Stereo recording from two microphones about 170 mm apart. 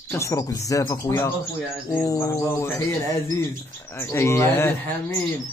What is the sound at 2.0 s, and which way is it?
Bird, 20° left (ahead or behind).